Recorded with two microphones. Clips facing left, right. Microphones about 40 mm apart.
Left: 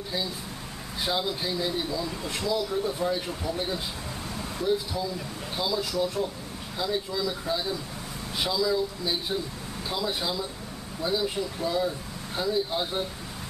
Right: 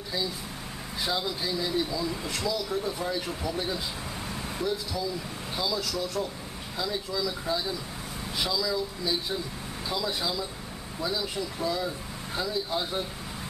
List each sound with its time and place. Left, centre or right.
1.0 s speech: centre
5.6 s speech: centre